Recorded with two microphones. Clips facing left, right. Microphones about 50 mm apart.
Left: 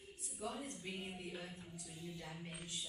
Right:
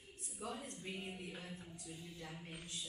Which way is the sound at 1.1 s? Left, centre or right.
Right.